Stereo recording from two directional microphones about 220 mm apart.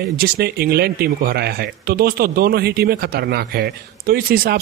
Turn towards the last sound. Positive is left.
turn(degrees=-45)  # may be behind; listen again after turning